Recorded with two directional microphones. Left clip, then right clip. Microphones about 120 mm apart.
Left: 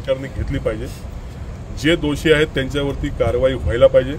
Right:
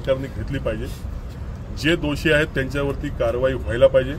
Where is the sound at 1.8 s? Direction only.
20° left (ahead or behind).